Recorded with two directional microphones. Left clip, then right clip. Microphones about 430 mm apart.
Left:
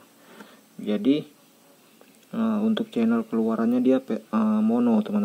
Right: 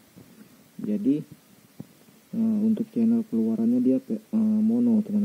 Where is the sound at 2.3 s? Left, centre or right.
Centre.